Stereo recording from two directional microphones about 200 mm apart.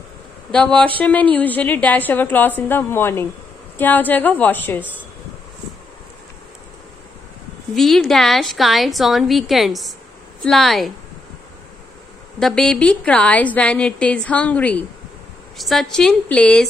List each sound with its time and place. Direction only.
0.5 s a woman's voice: 5° left (ahead or behind)
7.7 s a woman's voice: centre (ahead or behind)
12.4 s a woman's voice: centre (ahead or behind)